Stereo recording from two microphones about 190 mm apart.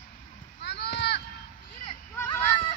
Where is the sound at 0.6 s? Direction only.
60° left (ahead or behind).